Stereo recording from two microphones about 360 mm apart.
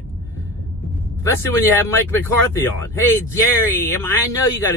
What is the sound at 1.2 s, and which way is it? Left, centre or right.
Speech, centre.